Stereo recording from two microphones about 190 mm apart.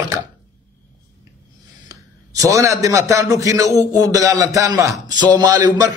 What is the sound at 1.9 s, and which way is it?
A man's voice, 15° right (ahead or behind).